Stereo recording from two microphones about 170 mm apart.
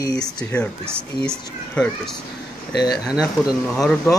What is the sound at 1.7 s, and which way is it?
Speech, 5° left (ahead or behind).